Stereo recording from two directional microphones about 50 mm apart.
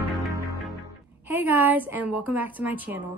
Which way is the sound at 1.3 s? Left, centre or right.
Right.